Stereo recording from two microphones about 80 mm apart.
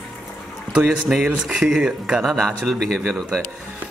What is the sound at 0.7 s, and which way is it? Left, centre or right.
A man's voice, centre.